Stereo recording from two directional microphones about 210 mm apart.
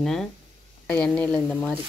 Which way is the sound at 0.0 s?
Centre (ahead or behind).